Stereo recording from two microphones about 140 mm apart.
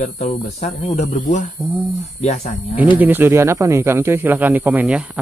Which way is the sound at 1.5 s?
15° right (ahead or behind).